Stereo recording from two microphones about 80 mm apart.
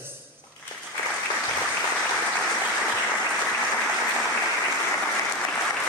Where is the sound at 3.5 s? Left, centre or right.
Centre.